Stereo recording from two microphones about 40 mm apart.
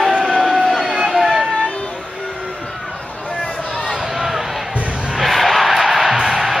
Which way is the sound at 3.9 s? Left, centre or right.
Centre.